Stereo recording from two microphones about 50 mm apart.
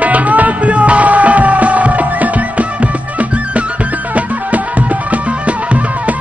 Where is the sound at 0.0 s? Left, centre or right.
Right.